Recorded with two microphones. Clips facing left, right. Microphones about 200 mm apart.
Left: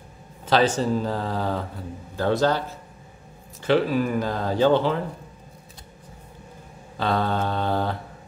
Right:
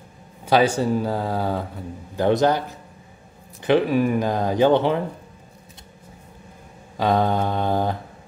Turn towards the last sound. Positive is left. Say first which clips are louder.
# right 3 dB
turn(degrees=-15)  # may be behind; listen again after turning